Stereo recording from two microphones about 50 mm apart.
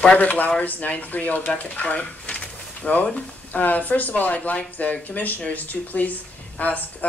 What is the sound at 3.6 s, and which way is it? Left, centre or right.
Speech, left.